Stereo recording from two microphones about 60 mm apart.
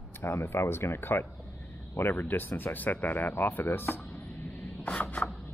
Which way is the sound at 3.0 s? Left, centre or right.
Left.